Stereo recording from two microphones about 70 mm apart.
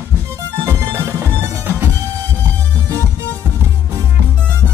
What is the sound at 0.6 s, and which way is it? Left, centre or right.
Music, right.